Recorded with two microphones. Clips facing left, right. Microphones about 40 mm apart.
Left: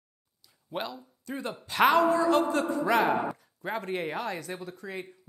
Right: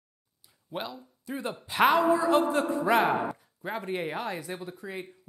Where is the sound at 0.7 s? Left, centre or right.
Centre.